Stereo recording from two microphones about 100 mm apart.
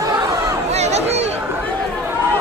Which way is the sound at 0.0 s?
30° right (ahead or behind).